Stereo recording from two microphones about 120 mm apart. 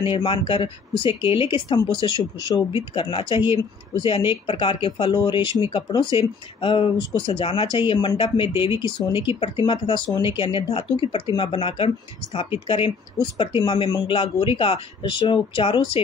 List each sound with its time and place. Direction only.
0.0 s speech: 45° left (ahead or behind)